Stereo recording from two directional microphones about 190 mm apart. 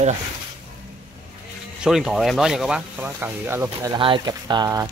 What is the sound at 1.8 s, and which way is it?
Speech, centre (ahead or behind).